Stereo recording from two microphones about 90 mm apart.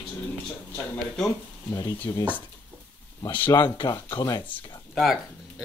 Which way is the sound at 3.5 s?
55° left (ahead or behind).